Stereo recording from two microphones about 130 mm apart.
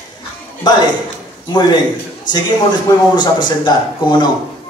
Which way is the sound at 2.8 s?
35° left (ahead or behind).